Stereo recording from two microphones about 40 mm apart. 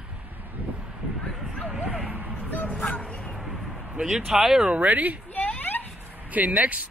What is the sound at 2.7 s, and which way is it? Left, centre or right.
Bow-wow, left.